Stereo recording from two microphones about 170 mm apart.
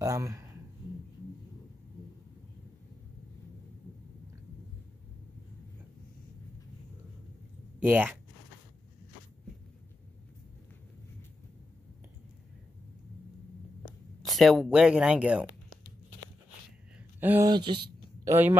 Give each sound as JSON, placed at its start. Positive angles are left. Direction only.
{"t": 0.0, "sound": "speech", "side_deg": -20}
{"t": 7.8, "sound": "speech", "side_deg": -10}
{"t": 14.2, "sound": "speech", "side_deg": 0}
{"t": 17.2, "sound": "speech", "side_deg": -10}
{"t": 17.5, "sound": "speech", "side_deg": -25}
{"t": 18.3, "sound": "speech", "side_deg": -10}